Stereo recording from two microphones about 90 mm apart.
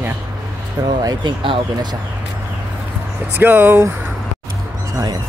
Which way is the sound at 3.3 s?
20° right (ahead or behind).